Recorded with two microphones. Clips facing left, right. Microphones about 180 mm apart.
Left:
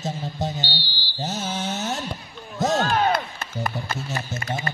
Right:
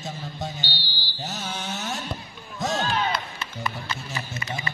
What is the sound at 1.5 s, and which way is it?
Music, 20° left (ahead or behind).